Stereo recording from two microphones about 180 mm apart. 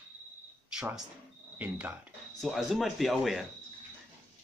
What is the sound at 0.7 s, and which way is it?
Speech, 5° right (ahead or behind).